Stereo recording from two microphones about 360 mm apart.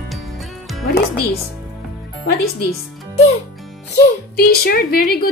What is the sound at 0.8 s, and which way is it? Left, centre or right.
Speech, left.